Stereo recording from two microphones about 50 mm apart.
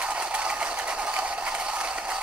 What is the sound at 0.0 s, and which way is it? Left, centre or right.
Mechanisms, right.